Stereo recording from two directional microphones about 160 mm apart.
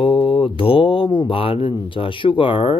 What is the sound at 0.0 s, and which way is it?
Speech, 35° left (ahead or behind).